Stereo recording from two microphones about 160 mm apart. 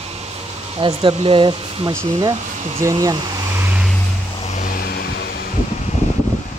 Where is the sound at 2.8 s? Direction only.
25° right (ahead or behind).